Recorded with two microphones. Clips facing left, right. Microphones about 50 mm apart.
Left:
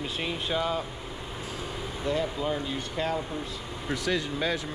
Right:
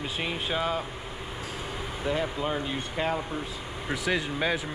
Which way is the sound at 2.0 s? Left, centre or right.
Centre.